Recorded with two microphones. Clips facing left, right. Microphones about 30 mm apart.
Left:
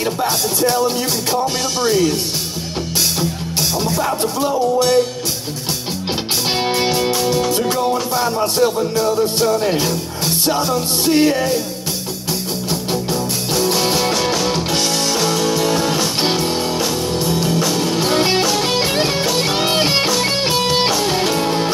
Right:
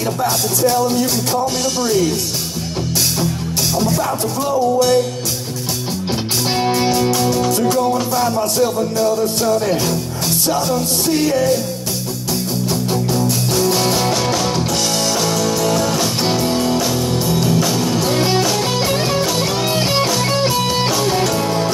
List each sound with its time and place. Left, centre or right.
0.0 s music: centre
3.7 s music: centre
6.4 s music: left
12.9 s music: centre
14.5 s music: centre
16.8 s music: centre
17.7 s music: centre
19.2 s music: centre
19.5 s music: left
20.9 s music: centre
21.2 s music: left